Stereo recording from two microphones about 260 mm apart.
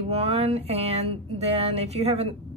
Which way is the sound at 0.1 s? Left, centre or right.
Right.